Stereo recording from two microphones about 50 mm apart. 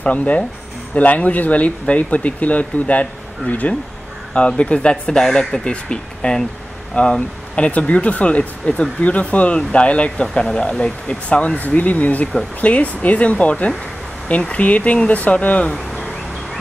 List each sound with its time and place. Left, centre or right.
0.0 s speech: left
10.2 s speech: centre; by 15.7 s left
15.7 s bee: centre